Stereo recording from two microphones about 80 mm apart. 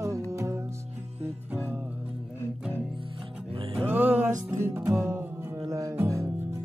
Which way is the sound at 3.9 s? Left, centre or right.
Right.